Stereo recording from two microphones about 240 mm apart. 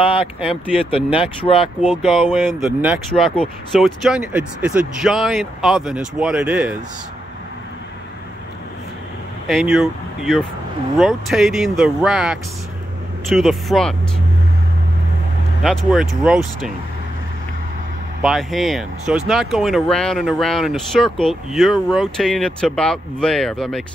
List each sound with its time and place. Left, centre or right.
0.0 s speech: left
1.8 s speech: centre
9.5 s speech: centre
15.6 s speech: centre
18.2 s speech: centre